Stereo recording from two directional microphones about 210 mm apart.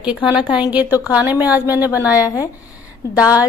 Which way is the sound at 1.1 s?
5° right (ahead or behind).